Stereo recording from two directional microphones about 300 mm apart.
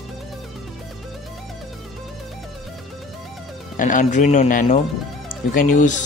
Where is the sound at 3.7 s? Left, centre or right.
Left.